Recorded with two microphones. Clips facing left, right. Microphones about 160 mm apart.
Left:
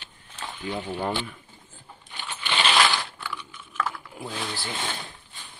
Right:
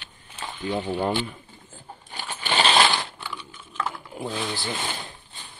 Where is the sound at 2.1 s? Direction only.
40° right (ahead or behind).